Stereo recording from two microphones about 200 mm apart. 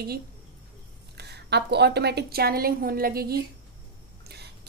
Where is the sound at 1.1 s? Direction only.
55° right (ahead or behind).